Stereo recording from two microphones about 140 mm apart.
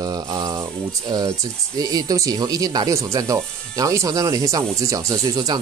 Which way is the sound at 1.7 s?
25° right (ahead or behind).